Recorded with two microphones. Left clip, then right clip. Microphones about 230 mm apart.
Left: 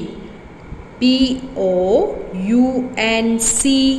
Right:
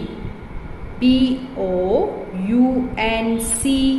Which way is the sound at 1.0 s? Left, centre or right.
Left.